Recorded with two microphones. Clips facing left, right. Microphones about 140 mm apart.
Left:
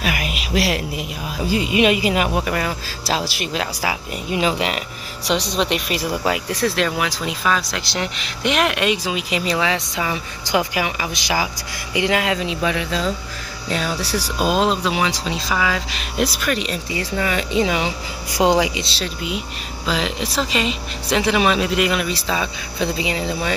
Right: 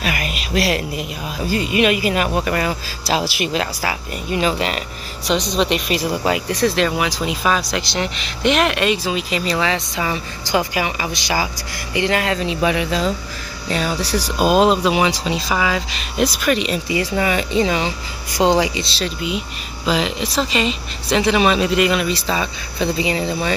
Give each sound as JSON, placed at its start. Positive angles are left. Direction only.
{"t": 0.0, "sound": "a sound", "side_deg": 5}
{"t": 1.5, "sound": "speech", "side_deg": 15}
{"t": 2.2, "sound": "speech", "side_deg": 5}
{"t": 3.8, "sound": "speech", "side_deg": 15}
{"t": 7.9, "sound": "speech", "side_deg": 5}
{"t": 12.5, "sound": "speech", "side_deg": -5}
{"t": 14.4, "sound": "speech", "side_deg": -10}
{"t": 17.5, "sound": "speech", "side_deg": 5}